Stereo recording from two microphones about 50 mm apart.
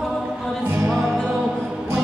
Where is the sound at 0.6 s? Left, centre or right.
Right.